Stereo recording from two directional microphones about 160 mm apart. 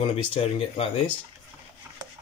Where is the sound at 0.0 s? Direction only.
35° left (ahead or behind).